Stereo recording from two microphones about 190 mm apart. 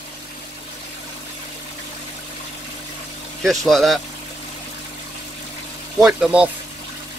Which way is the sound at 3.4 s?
Centre (ahead or behind).